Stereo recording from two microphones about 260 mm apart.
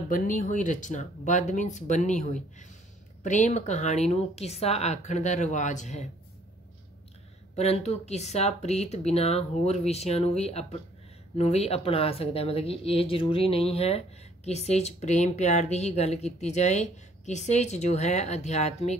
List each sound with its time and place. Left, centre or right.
0.1 s speech: left
7.5 s speech: left